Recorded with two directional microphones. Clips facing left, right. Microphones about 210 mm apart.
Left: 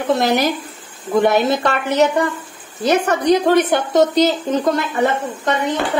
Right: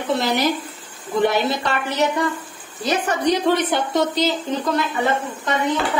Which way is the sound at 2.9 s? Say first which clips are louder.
Left 5 dB; 55° left (ahead or behind).